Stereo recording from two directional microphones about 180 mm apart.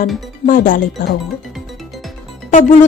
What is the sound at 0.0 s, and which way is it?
Speech, 50° left (ahead or behind).